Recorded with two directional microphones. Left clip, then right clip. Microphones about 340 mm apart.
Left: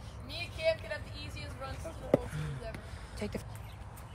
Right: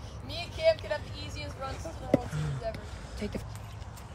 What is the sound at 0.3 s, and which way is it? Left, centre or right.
Vehicle, centre.